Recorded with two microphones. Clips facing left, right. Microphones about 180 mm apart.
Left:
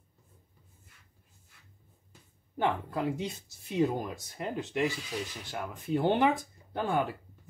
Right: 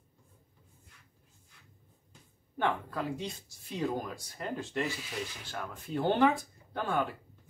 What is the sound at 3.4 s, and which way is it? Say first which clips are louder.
Speech: left 6 dB; 20° left (ahead or behind).